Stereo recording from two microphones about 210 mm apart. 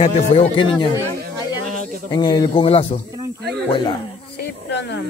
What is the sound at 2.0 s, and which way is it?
Speech, 20° left (ahead or behind).